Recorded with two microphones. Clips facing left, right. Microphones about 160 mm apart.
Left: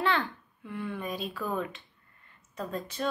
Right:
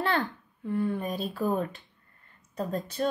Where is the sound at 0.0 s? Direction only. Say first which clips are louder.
Right 1 dB; 40° right (ahead or behind).